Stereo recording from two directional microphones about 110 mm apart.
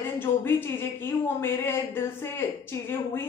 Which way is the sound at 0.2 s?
20° left (ahead or behind).